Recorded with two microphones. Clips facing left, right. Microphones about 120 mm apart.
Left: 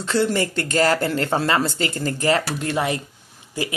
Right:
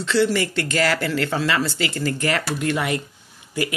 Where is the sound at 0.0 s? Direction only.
45° left (ahead or behind).